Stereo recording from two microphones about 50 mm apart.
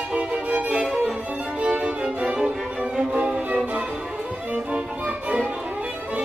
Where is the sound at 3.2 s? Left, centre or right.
Right.